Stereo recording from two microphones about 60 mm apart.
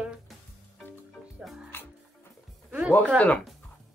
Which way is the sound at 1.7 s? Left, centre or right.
Left.